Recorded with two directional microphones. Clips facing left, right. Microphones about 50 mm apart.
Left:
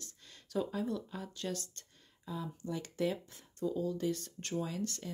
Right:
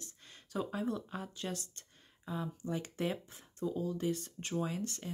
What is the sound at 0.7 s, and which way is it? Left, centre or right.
Speech, right.